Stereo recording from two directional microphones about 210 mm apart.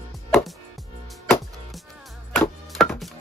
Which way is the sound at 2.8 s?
Centre (ahead or behind).